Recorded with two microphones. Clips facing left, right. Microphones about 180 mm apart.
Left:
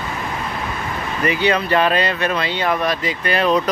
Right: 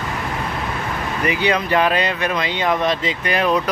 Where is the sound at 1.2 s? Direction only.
15° right (ahead or behind).